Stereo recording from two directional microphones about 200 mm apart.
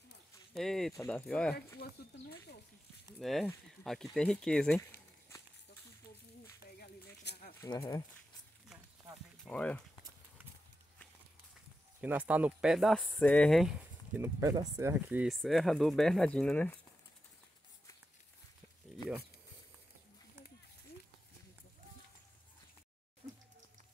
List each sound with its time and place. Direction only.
0.6 s speech: centre (ahead or behind)
1.8 s speech: 50° left (ahead or behind)
3.2 s speech: centre (ahead or behind)
6.8 s a sound: 50° left (ahead or behind)
7.6 s speech: 20° left (ahead or behind)
9.4 s speech: 5° left (ahead or behind)
12.0 s speech: 10° right (ahead or behind)
14.2 s speech: 15° right (ahead or behind); by 16.8 s 5° left (ahead or behind)